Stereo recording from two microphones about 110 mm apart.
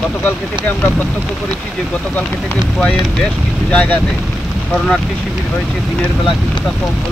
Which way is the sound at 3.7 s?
10° left (ahead or behind).